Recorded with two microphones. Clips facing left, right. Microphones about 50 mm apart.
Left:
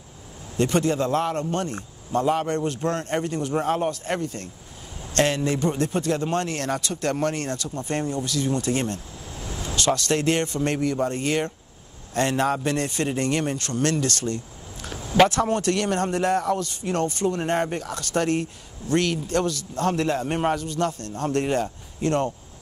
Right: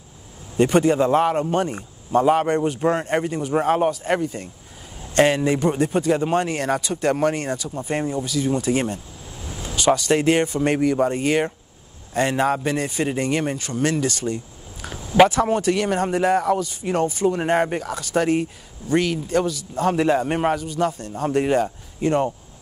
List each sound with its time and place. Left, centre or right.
0.6 s speech: centre